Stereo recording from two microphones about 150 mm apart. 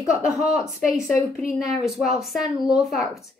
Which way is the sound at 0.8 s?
Centre (ahead or behind).